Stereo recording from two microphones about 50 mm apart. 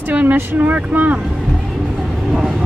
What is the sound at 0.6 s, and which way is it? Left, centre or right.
Speech, right.